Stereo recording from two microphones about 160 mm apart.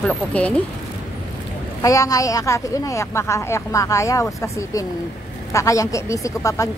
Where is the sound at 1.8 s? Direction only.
20° left (ahead or behind).